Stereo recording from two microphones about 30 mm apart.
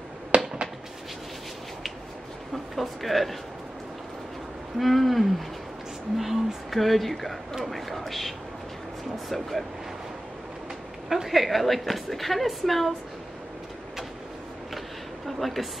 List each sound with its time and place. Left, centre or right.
0.3 s a sound: right
2.5 s speech: centre
4.7 s speech: centre
9.3 s speech: centre
11.2 s speech: centre
15.2 s speech: centre